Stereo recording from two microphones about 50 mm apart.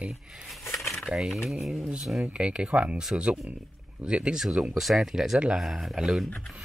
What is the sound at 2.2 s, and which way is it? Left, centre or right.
Speech, right.